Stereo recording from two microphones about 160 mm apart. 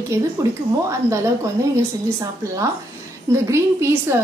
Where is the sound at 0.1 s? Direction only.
15° right (ahead or behind).